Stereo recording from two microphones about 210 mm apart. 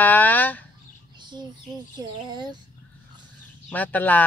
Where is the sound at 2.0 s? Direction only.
20° right (ahead or behind).